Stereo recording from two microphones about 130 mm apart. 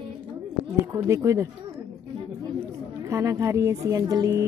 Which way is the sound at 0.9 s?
25° right (ahead or behind).